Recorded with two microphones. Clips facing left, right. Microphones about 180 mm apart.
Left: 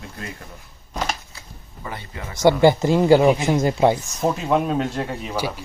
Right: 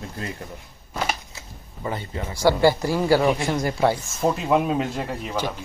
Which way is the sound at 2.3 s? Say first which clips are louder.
Left 3 dB; 20° left (ahead or behind).